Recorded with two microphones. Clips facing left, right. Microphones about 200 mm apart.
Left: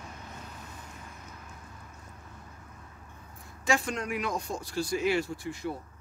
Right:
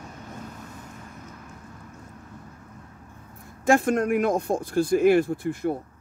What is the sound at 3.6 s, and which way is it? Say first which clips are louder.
Speech: right 9 dB; 50° right (ahead or behind).